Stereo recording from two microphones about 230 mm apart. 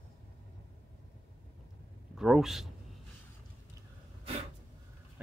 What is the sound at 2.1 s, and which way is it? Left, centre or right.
Speech, centre.